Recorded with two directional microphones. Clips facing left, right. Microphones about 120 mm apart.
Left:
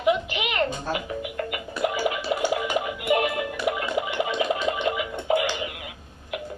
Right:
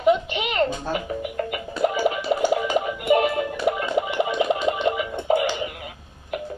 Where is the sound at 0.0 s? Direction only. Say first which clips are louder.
Right 3 dB; 30° right (ahead or behind).